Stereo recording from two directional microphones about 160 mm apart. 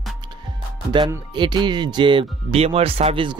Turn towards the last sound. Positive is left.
turn(degrees=-35)  # may be behind; listen again after turning